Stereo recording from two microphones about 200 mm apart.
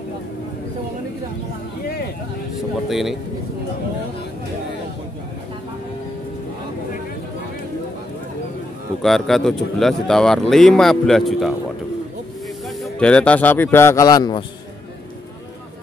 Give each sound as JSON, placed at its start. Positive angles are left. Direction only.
{"t": 2.9, "sound": "speech", "side_deg": 0}
{"t": 9.0, "sound": "speech", "side_deg": 0}
{"t": 12.6, "sound": "speech", "side_deg": 5}